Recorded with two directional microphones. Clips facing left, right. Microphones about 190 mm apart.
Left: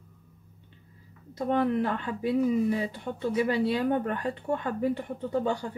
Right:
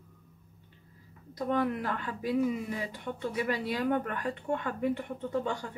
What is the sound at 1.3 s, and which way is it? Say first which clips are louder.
Speech: left 4 dB; 25° left (ahead or behind).